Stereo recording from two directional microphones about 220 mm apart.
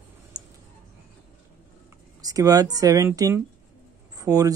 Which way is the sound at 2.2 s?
15° right (ahead or behind).